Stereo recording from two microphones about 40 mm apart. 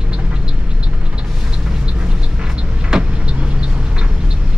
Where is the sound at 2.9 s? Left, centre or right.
Centre.